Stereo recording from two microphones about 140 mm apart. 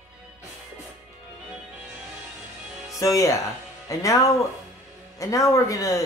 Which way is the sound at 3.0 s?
25° left (ahead or behind).